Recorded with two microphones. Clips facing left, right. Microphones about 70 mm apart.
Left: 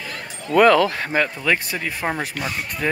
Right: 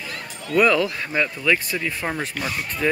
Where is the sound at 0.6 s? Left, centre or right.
Left.